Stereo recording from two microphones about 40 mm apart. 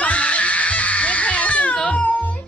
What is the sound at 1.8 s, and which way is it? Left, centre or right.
Music, left.